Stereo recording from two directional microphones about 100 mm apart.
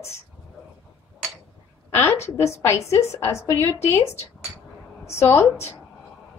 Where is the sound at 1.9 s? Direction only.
25° left (ahead or behind).